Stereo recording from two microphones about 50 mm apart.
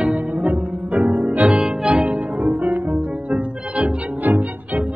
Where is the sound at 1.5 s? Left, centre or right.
Centre.